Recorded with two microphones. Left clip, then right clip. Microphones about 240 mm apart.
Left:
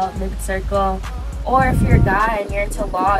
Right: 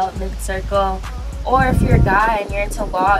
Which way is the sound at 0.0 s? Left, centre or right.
Centre.